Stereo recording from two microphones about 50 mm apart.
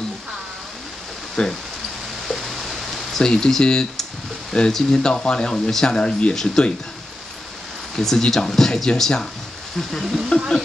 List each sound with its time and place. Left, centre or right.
1.4 s speech: centre
2.2 s a sound: centre
4.5 s speech: centre
5.9 s speech: centre
7.9 s speech: centre
10.0 s speech: centre